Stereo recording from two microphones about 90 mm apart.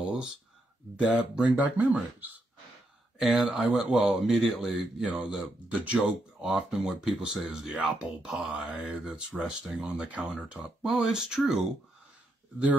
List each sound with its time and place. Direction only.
0.9 s speech: 10° right (ahead or behind)